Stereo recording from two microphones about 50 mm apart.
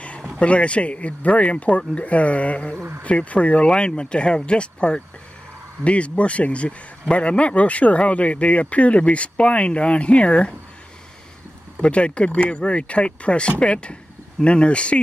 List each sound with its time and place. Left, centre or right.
0.4 s speech: left
11.8 s speech: left